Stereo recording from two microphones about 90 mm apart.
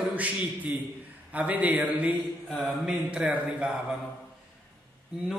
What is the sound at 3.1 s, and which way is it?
Speech, 15° right (ahead or behind).